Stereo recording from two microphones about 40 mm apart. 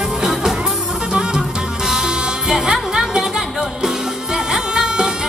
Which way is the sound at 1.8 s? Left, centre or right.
Centre.